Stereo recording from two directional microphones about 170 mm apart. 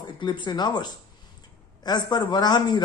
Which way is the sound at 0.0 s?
25° left (ahead or behind).